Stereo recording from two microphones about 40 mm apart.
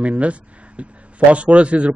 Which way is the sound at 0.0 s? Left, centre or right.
Right.